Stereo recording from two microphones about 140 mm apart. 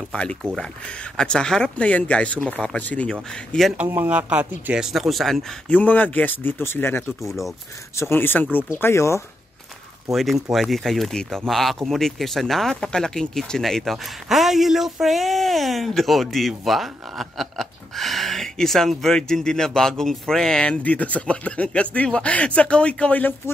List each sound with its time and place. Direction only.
0.1 s speech: 10° left (ahead or behind)
3.7 s speech: 10° right (ahead or behind); by 7.1 s 15° left (ahead or behind)
7.2 s speech: centre (ahead or behind)
7.9 s speech: 20° left (ahead or behind)
10.1 s speech: centre (ahead or behind)